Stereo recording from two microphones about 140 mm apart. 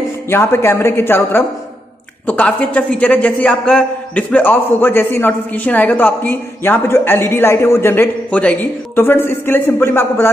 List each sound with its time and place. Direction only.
0.3 s a man's voice: 15° left (ahead or behind)